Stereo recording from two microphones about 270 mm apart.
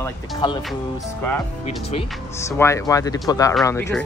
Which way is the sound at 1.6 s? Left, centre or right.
Left.